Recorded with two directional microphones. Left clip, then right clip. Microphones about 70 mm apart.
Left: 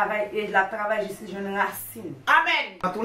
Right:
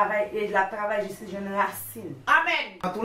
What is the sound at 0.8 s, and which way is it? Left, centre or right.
Speech, centre.